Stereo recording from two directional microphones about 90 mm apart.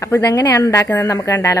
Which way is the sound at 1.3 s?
25° left (ahead or behind).